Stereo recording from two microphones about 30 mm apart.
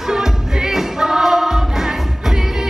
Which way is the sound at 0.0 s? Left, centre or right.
Centre.